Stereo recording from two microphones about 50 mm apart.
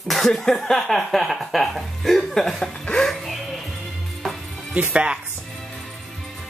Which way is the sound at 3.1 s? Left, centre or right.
Centre.